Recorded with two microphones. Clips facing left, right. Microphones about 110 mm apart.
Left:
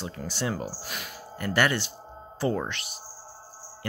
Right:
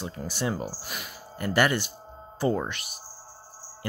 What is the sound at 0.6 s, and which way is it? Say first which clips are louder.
Speech: even; centre (ahead or behind).